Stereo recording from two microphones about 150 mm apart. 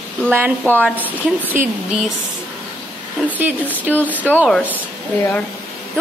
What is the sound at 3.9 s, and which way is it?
Speech, 10° left (ahead or behind).